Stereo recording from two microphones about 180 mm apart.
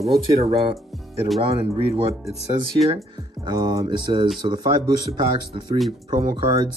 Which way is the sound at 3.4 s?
20° right (ahead or behind).